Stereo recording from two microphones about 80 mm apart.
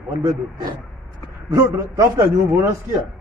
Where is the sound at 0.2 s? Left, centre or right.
Right.